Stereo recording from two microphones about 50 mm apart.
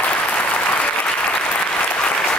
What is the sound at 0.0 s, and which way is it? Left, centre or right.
Applause, left.